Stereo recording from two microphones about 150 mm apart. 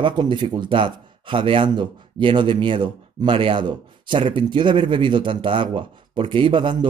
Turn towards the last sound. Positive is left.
turn(degrees=-35)  # may be behind; listen again after turning